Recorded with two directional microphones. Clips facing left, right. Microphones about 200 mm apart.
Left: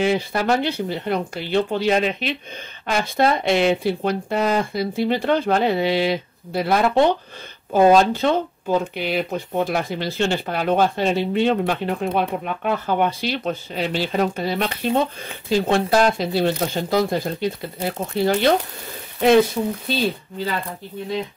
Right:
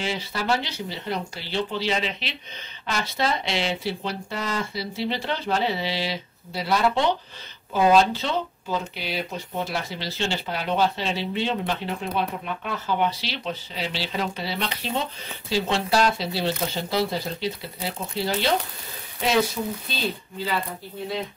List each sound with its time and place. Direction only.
0.0 s speech: 55° left (ahead or behind)